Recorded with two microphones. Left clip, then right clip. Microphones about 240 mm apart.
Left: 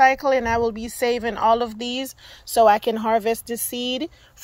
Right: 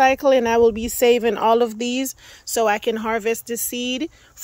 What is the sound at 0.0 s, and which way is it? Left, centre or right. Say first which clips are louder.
Speech: right 1 dB; right.